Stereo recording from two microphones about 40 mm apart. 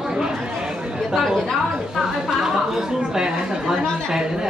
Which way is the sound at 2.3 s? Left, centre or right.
Centre.